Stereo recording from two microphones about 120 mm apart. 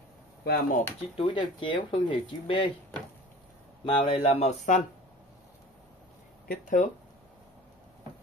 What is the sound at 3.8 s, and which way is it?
Speech, 50° left (ahead or behind).